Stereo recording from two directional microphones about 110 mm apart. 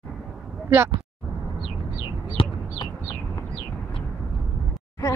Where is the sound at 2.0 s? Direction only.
40° left (ahead or behind).